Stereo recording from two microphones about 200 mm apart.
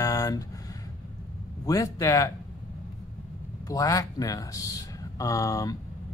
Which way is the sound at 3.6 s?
15° left (ahead or behind).